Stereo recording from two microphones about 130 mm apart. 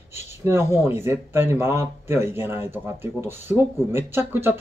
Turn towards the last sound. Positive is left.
turn(degrees=-20)  # may be behind; listen again after turning